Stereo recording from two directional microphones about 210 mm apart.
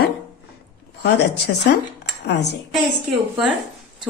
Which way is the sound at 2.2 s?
55° left (ahead or behind).